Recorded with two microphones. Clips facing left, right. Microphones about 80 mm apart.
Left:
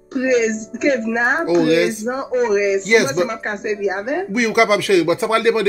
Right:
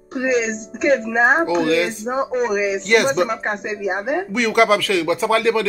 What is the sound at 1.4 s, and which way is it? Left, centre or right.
Speech, centre.